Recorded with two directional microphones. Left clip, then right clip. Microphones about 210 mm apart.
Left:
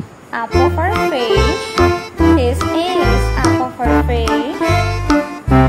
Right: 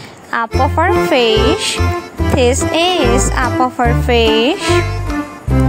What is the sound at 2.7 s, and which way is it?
Music, 50° right (ahead or behind).